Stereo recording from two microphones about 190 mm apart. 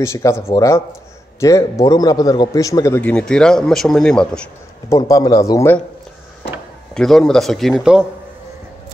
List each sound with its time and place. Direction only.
0.0 s a man's voice: 15° left (ahead or behind)
4.8 s a man's voice: 20° left (ahead or behind)
6.9 s speech: centre (ahead or behind)